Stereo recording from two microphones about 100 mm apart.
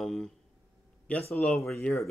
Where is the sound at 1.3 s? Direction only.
15° left (ahead or behind).